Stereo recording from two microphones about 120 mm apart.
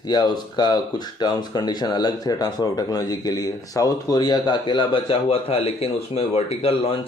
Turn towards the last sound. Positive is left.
turn(degrees=50)  # may be behind; listen again after turning